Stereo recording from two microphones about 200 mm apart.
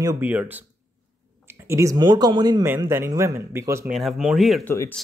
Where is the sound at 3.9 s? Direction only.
Centre (ahead or behind).